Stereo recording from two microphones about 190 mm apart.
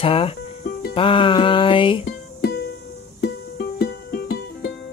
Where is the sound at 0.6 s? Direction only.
55° left (ahead or behind).